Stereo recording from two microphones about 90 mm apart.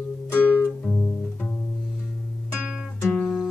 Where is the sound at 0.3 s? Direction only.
20° left (ahead or behind).